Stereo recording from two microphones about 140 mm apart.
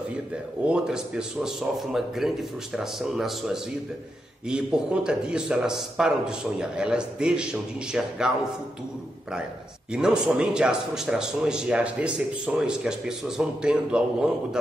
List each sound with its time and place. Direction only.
0.7 s a man's voice: 5° right (ahead or behind)
9.9 s a man's voice: 5° right (ahead or behind)